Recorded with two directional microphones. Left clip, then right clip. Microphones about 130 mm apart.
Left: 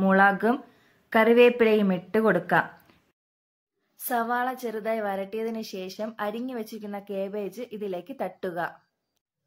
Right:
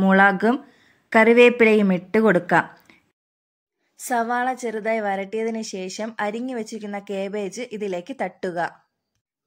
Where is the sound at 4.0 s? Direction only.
30° right (ahead or behind).